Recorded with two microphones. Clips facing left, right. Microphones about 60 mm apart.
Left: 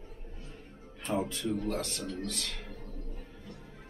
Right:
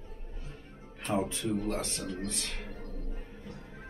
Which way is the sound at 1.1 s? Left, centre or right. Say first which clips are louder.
Right 1 dB; right.